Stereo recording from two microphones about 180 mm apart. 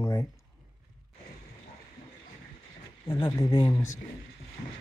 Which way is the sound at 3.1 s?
20° left (ahead or behind).